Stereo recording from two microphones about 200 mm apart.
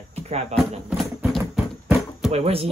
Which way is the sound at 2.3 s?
30° right (ahead or behind).